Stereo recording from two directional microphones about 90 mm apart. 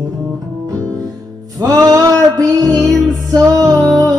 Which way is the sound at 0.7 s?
40° right (ahead or behind).